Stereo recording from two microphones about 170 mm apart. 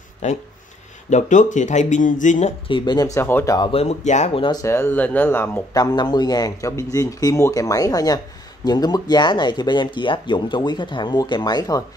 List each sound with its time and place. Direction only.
0.2 s speech: 45° left (ahead or behind)
2.7 s speech: 25° left (ahead or behind)
3.2 s speech: 15° left (ahead or behind)
3.7 s speech: 40° left (ahead or behind); by 11.8 s 25° left (ahead or behind)